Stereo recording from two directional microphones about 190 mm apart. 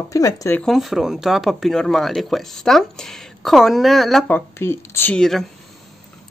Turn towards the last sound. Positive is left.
turn(degrees=0)  # may be behind; listen again after turning